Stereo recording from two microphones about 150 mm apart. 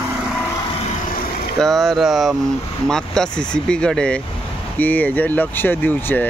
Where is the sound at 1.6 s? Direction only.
Centre (ahead or behind).